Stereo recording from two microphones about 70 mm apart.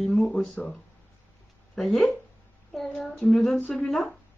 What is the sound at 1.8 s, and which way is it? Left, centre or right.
Speech, centre.